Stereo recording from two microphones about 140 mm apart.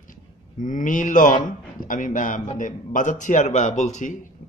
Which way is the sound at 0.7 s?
65° left (ahead or behind).